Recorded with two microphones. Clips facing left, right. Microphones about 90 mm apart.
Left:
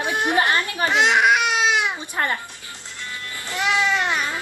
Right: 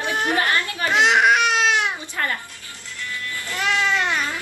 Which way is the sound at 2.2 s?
30° left (ahead or behind).